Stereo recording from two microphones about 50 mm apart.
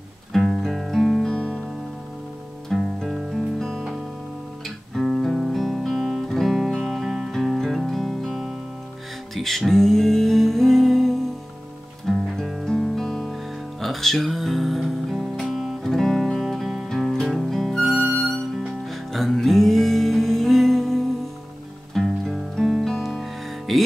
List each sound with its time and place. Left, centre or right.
0.3 s music: centre
1.2 s music: centre
2.7 s music: centre
7.1 s music: centre
7.3 s music: centre
12.1 s guitar: centre
15.4 s music: centre
15.8 s music: centre
16.9 s music: centre
17.9 s music: right
18.2 s music: centre